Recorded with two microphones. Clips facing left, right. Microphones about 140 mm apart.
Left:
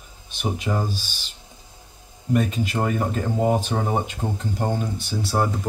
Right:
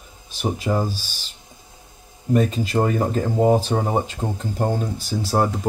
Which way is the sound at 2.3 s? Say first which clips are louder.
Right 3 dB; 35° right (ahead or behind).